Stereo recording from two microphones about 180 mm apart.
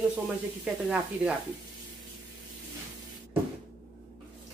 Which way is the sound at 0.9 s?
5° right (ahead or behind).